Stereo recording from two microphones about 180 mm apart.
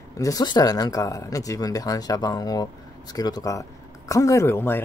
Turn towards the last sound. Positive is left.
turn(degrees=15)  # may be behind; listen again after turning